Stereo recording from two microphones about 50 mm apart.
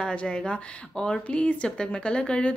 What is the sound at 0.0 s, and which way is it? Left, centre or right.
Speech, centre.